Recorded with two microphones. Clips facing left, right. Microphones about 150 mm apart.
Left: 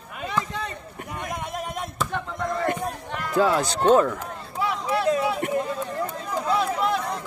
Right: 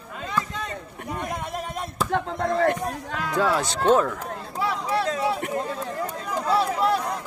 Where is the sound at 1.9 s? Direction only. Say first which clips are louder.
Right 6 dB; 35° right (ahead or behind).